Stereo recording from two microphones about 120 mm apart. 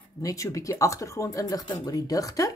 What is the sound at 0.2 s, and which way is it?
Speech, 30° left (ahead or behind).